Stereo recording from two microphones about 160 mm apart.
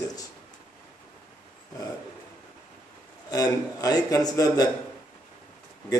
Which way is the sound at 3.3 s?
25° left (ahead or behind).